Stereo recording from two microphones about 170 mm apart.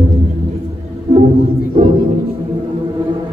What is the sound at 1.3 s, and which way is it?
Music, 60° left (ahead or behind).